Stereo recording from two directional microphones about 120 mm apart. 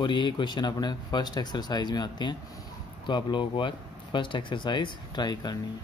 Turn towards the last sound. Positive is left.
turn(degrees=35)  # may be behind; listen again after turning